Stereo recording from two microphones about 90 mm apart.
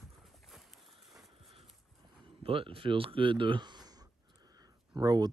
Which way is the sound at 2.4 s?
85° right.